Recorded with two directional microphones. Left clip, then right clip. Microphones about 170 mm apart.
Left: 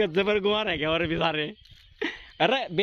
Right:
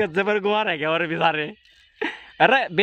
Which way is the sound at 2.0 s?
20° right (ahead or behind).